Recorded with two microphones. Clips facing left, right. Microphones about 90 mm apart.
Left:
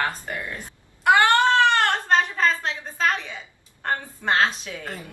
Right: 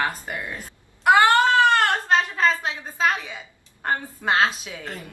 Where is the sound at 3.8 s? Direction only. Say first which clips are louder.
Right 1 dB; 10° right (ahead or behind).